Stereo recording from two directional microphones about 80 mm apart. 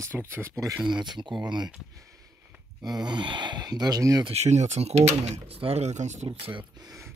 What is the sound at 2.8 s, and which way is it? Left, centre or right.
Speech, right.